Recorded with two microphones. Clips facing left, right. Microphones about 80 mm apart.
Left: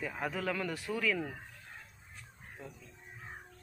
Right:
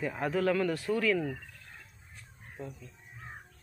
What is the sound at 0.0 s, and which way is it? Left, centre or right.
Speech, centre.